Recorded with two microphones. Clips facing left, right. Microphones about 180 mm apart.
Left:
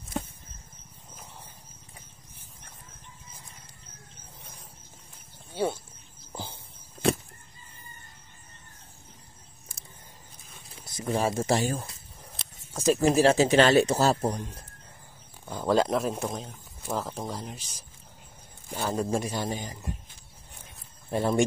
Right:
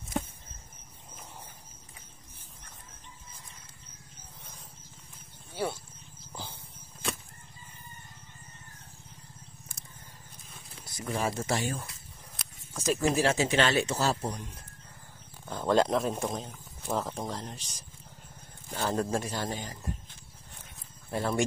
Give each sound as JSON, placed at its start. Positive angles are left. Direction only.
{"t": 5.5, "sound": "a sound", "side_deg": 20}
{"t": 6.3, "sound": "horse", "side_deg": 20}
{"t": 11.0, "sound": "speech", "side_deg": 25}
{"t": 15.4, "sound": "speech", "side_deg": 5}
{"t": 21.1, "sound": "speech", "side_deg": 20}